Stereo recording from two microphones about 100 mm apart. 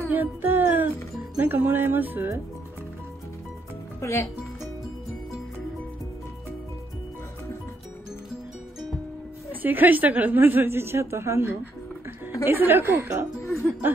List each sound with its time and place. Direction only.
0.1 s music: 20° right (ahead or behind)
1.4 s a woman's voice: 20° right (ahead or behind)
4.0 s speech: 25° left (ahead or behind)
9.5 s a woman's voice: 20° right (ahead or behind)